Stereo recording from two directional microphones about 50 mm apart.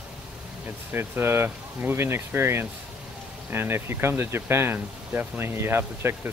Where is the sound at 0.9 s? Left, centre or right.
Right.